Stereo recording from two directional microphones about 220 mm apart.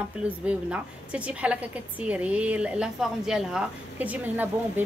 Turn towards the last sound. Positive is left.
turn(degrees=-5)  # may be behind; listen again after turning